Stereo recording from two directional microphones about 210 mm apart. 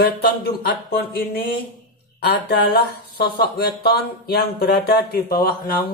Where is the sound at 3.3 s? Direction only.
50° left (ahead or behind).